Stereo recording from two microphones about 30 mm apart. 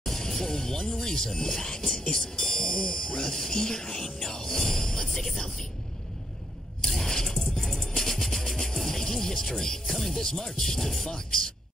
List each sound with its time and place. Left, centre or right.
0.0 s speech: centre
5.0 s music: centre
6.9 s a sound: centre
7.5 s music: centre
10.2 s music: centre
11.1 s speech: left